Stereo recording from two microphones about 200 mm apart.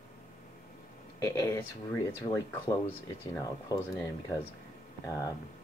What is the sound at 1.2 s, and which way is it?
Speech, 15° left (ahead or behind).